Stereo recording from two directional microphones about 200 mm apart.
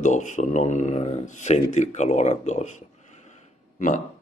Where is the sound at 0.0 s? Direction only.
40° left (ahead or behind).